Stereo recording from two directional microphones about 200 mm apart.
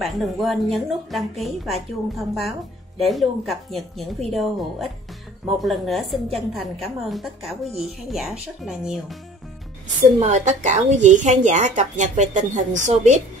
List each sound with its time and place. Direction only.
0.0 s a woman's voice: centre (ahead or behind)
10.1 s a woman's voice: 35° right (ahead or behind)